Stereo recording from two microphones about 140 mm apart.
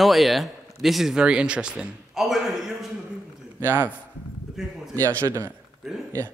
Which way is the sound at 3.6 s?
15° right (ahead or behind).